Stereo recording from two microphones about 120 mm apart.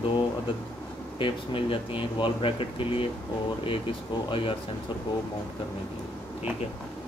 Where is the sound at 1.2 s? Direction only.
45° left (ahead or behind).